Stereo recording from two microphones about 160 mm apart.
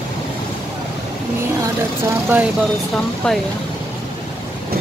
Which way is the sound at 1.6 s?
15° right (ahead or behind).